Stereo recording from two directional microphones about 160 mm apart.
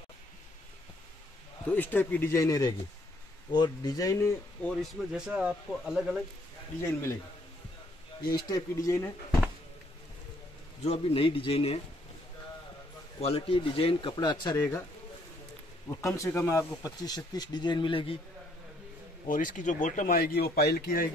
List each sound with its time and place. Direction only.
1.7 s speech: 10° left (ahead or behind)
4.6 s a man's voice: 5° right (ahead or behind)
6.8 s speech: 20° left (ahead or behind)
8.2 s speech: 25° left (ahead or behind)
10.8 s speech: 40° left (ahead or behind)
13.2 s speech: 35° left (ahead or behind); by 14.9 s 20° left (ahead or behind)
15.9 s speech: 20° left (ahead or behind)
19.2 s speech: 55° left (ahead or behind)
20.2 s speech: 75° left (ahead or behind)